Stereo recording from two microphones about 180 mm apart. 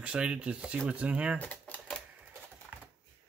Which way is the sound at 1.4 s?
10° left (ahead or behind).